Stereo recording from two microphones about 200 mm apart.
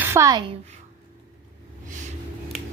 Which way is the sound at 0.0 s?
15° right (ahead or behind).